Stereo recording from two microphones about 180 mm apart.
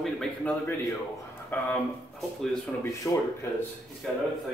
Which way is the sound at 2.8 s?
15° left (ahead or behind).